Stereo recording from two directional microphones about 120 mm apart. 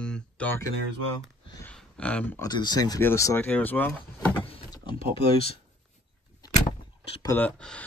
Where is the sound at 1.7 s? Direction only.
10° left (ahead or behind).